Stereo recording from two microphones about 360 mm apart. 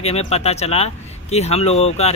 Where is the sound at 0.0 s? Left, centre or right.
Centre.